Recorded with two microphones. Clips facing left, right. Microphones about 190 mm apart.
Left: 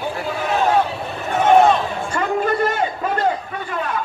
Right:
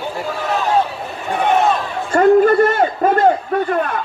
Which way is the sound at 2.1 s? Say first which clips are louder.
Right 10 dB; 50° right (ahead or behind).